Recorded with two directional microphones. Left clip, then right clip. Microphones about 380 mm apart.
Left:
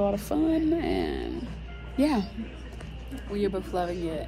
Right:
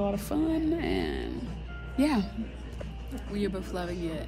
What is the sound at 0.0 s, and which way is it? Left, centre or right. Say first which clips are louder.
Speech: left 4 dB; centre.